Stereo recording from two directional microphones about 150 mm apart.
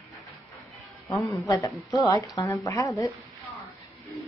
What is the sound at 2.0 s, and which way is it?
Speech, 25° left (ahead or behind).